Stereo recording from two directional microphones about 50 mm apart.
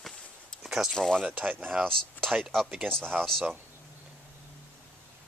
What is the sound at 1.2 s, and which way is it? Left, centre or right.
Speech, right.